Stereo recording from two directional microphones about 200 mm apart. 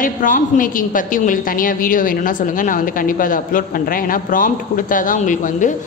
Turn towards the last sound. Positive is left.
turn(degrees=40)  # may be behind; listen again after turning